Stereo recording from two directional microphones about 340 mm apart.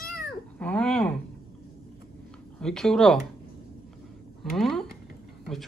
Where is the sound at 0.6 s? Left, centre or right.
Centre.